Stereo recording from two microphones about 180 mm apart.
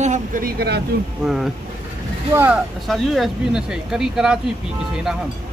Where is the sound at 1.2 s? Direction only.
5° right (ahead or behind).